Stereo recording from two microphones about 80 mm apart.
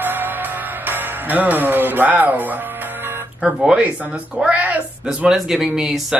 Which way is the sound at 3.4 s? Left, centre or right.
Centre.